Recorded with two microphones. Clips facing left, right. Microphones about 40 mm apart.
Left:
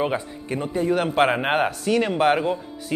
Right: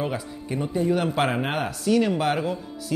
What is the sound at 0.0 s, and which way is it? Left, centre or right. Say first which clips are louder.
Speech: left 4 dB; left.